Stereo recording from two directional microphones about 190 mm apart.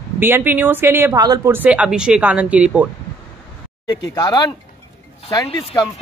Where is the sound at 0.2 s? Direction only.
10° right (ahead or behind).